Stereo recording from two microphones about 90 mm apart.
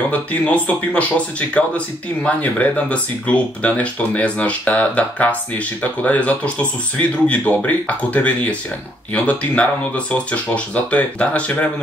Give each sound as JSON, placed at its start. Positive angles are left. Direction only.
{"t": 0.1, "sound": "speech", "side_deg": 15}